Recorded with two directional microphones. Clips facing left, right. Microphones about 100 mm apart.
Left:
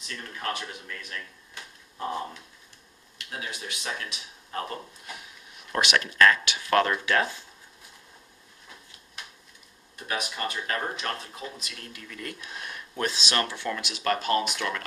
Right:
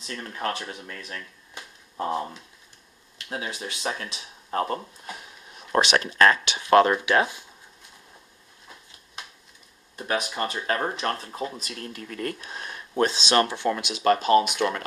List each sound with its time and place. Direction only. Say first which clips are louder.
0.0 s speech: right 4 dB; 35° right (ahead or behind)
3.3 s speech: right 4 dB; 35° right (ahead or behind); by 7.4 s 15° right (ahead or behind)
9.9 s speech: right 5 dB; 30° right (ahead or behind)
12.5 s speech: right 10 dB; 30° right (ahead or behind)